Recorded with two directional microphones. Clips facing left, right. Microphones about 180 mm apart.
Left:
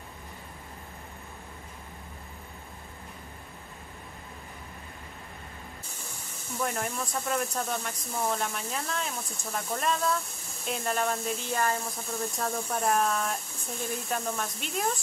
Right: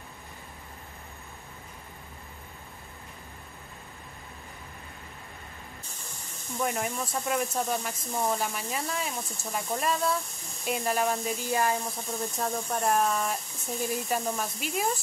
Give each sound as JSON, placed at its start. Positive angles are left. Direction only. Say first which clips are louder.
{"t": 6.6, "sound": "speech", "louder": "right 2 dB", "side_deg": -5}